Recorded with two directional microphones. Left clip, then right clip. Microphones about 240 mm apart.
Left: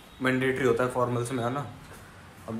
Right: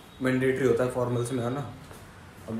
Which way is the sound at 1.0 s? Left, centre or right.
Centre.